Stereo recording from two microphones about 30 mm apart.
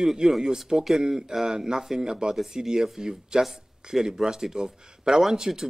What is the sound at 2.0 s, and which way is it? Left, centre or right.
Speech, right.